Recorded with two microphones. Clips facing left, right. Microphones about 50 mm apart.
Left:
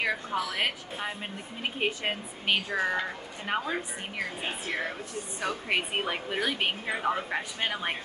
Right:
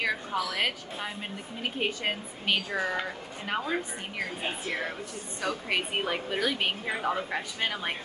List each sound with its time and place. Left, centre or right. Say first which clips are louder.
0.0 s a woman's voice: even; centre
5.4 s a woman's voice: even; centre